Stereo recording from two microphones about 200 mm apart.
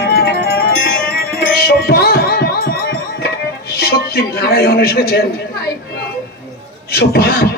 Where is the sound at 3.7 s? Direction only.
50° left (ahead or behind).